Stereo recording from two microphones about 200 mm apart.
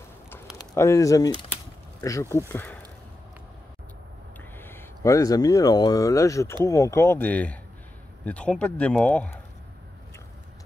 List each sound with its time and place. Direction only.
0.7 s speech: 15° left (ahead or behind)
4.6 s speech: 10° left (ahead or behind)